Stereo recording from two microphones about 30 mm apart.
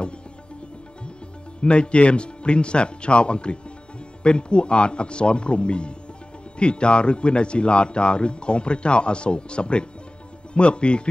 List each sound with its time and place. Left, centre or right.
1.6 s speech: left